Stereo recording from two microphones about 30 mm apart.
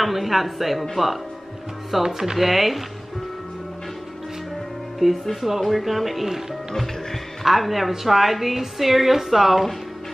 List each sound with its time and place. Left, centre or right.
0.0 s a woman's voice: centre
2.0 s speech: centre
2.3 s a woman's voice: centre
4.9 s a woman's voice: centre
7.4 s a woman's voice: centre